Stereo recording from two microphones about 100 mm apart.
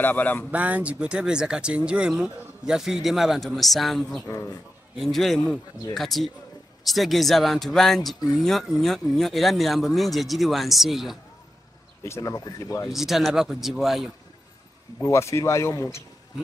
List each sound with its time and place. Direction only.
0.0 s speech: 15° left (ahead or behind)
0.5 s speech: 15° right (ahead or behind)
12.0 s speech: 30° left (ahead or behind)
12.9 s speech: 5° right (ahead or behind)
15.0 s speech: 30° left (ahead or behind)